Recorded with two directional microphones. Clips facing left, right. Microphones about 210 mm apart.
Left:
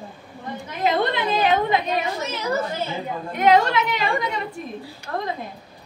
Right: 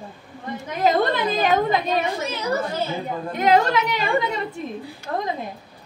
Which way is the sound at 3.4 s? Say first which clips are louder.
Left 1 dB; 35° right (ahead or behind).